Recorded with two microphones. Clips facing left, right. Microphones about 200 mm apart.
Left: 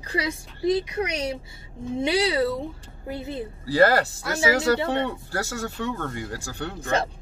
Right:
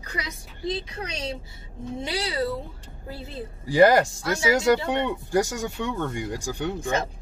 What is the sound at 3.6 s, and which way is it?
Speech, 15° right (ahead or behind).